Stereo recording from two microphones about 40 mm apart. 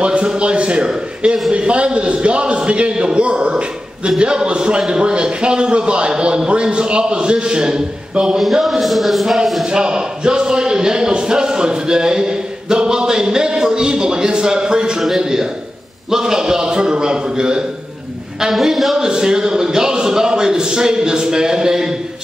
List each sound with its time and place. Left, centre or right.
0.0 s a man's voice: right
8.6 s speech: centre
9.7 s speech: right
15.1 s a sound: centre
16.1 s a man's voice: centre
18.5 s speech: centre
18.9 s a man's voice: centre